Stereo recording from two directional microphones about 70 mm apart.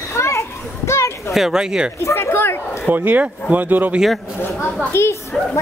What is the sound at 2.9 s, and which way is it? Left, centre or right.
Speech, right.